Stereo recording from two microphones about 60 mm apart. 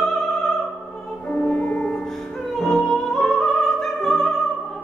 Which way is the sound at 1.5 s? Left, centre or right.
Left.